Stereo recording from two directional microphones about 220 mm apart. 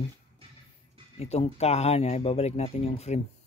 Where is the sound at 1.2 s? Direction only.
30° left (ahead or behind).